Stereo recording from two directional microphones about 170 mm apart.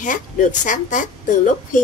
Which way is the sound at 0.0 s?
50° left (ahead or behind).